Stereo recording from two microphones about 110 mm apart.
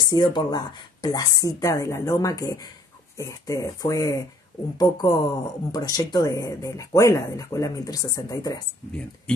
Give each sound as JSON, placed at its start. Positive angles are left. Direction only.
{"t": 0.0, "sound": "speech", "side_deg": 45}